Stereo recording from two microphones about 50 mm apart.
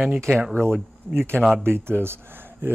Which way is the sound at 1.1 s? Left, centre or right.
Right.